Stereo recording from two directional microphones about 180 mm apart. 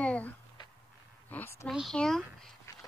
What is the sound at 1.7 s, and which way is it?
Speech, centre (ahead or behind).